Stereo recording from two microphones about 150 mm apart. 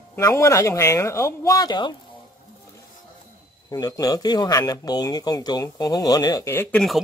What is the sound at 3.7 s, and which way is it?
Speech, 25° left (ahead or behind).